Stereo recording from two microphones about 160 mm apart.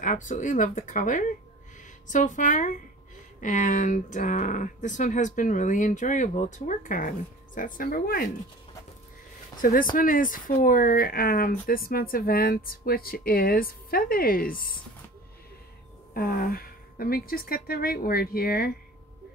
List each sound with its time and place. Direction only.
0.0 s speech: 50° left (ahead or behind)
9.6 s speech: 60° left (ahead or behind)
16.1 s a woman's voice: 65° left (ahead or behind)